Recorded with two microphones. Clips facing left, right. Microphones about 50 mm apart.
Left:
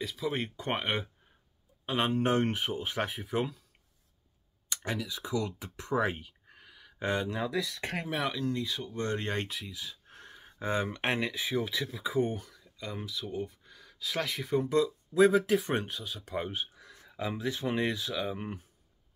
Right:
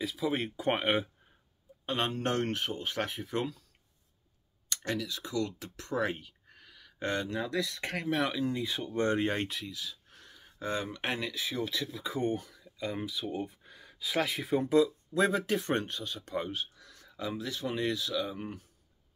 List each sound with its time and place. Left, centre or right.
0.0 s speech: centre
1.9 s speech: centre
4.6 s speech: centre
7.8 s speech: left
8.1 s speech: centre
8.4 s speech: centre
8.6 s speech: right
9.2 s speech: centre
9.7 s a sound: left
10.4 s speech: left